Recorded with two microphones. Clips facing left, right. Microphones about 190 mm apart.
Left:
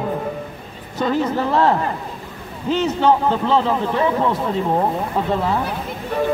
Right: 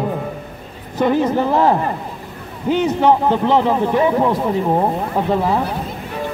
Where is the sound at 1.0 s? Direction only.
15° right (ahead or behind).